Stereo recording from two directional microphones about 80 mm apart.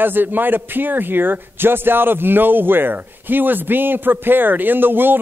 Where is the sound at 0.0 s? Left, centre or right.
Right.